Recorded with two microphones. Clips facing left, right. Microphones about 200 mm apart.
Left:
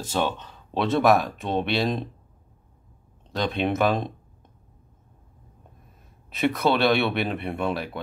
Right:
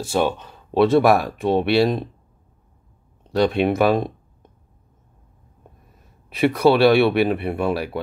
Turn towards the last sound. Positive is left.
turn(degrees=-5)  # may be behind; listen again after turning